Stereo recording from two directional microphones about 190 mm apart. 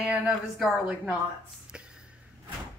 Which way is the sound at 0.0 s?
5° right (ahead or behind).